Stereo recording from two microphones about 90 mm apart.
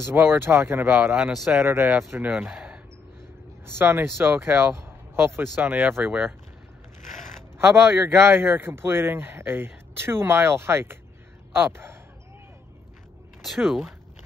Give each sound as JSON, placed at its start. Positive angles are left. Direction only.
{"t": 0.0, "sound": "a man's voice", "side_deg": -25}
{"t": 1.2, "sound": "speech", "side_deg": -5}
{"t": 1.5, "sound": "a man's voice", "side_deg": -25}
{"t": 2.5, "sound": "a sound", "side_deg": -10}
{"t": 3.6, "sound": "a man's voice", "side_deg": -25}
{"t": 7.5, "sound": "a man's voice", "side_deg": -25}
{"t": 13.4, "sound": "speech", "side_deg": 0}